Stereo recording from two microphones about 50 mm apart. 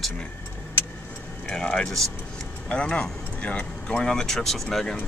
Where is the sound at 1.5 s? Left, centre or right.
Centre.